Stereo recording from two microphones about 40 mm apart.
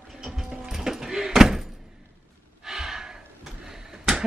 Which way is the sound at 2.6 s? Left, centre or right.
Centre.